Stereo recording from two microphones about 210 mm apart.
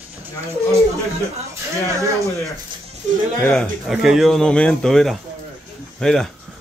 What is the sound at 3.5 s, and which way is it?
Speech, centre (ahead or behind).